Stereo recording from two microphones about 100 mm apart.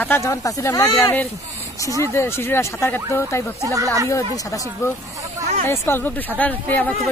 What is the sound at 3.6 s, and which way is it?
Speech, 35° right (ahead or behind).